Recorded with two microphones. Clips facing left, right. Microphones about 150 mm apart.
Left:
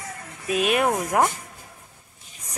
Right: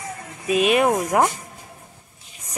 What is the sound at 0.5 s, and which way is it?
Speech, centre (ahead or behind).